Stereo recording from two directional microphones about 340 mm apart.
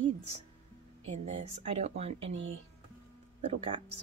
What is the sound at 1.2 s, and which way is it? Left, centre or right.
Speech, centre.